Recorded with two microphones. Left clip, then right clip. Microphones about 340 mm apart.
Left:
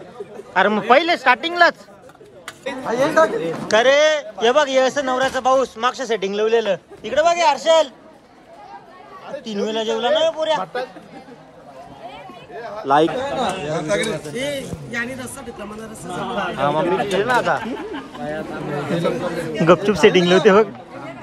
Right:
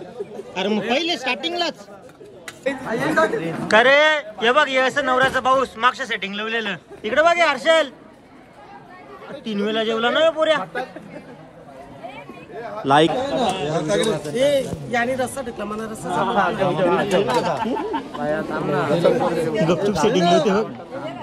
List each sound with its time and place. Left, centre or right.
0.4 s speech: centre
3.2 s a man's voice: centre
3.6 s a man's voice: centre
9.4 s speech: centre
13.1 s speech: centre